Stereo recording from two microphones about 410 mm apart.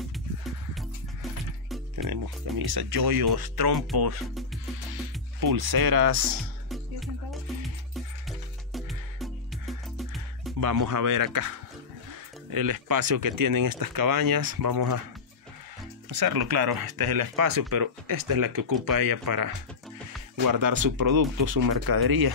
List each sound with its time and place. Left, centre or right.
2.0 s speech: right
5.4 s speech: right
6.7 s music: centre
10.6 s speech: right
16.1 s speech: right